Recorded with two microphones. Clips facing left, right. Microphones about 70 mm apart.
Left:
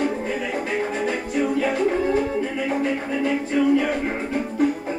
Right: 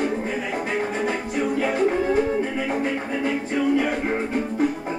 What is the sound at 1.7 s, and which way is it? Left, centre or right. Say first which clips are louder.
Music: even; right.